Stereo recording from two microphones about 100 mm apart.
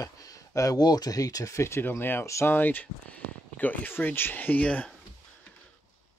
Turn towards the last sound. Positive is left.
turn(degrees=15)  # may be behind; listen again after turning